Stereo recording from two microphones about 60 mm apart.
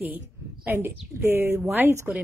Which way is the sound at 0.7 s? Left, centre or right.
Right.